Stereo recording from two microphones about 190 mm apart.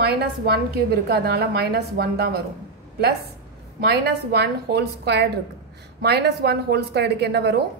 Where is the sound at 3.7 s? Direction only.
60° right (ahead or behind).